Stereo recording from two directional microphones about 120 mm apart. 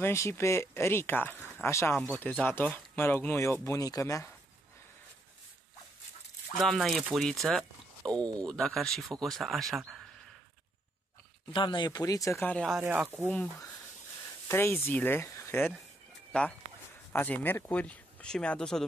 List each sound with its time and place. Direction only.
0.0 s speech: 20° left (ahead or behind)
2.1 s speech: 15° left (ahead or behind)
6.5 s speech: centre (ahead or behind)
11.5 s speech: 40° left (ahead or behind)
12.4 s speech: 10° left (ahead or behind)
12.6 s speech: 5° right (ahead or behind)
14.5 s speech: 20° left (ahead or behind)
16.3 s a sound: 10° left (ahead or behind)
17.1 s speech: 15° left (ahead or behind)